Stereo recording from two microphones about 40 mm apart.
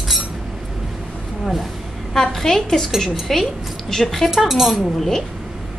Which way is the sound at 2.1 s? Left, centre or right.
Centre.